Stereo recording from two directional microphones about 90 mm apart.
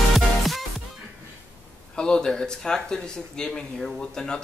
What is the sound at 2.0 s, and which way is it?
Speech, 10° left (ahead or behind).